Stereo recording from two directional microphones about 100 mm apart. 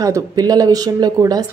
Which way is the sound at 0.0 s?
35° right (ahead or behind).